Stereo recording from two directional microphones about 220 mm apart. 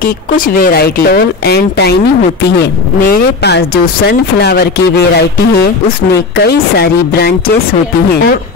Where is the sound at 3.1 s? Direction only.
45° left (ahead or behind).